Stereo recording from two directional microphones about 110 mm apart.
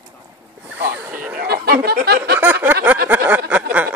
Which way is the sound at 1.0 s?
15° right (ahead or behind).